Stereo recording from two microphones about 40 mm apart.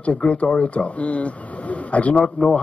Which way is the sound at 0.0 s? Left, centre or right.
Left.